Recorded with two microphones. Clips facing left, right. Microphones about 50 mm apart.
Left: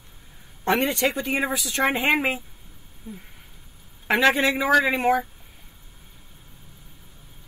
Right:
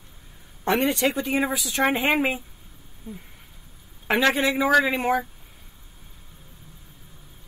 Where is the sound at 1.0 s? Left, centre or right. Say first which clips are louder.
Right 1 dB; centre.